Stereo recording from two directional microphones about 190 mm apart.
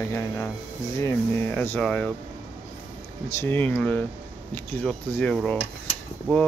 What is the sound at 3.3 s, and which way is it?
Speech, 10° left (ahead or behind).